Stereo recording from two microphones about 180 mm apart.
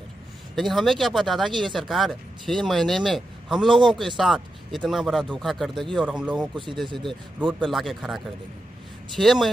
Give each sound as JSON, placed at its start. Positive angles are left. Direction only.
{"t": 0.6, "sound": "speech", "side_deg": 0}
{"t": 6.5, "sound": "speech", "side_deg": -25}
{"t": 7.4, "sound": "speech", "side_deg": 0}